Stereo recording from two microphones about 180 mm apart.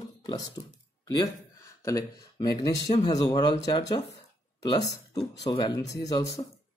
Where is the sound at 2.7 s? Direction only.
40° left (ahead or behind).